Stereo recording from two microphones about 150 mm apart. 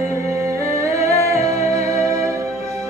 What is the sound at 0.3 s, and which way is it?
Music, 20° right (ahead or behind).